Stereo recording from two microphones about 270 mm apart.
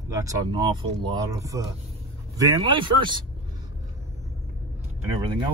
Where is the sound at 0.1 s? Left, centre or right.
Centre.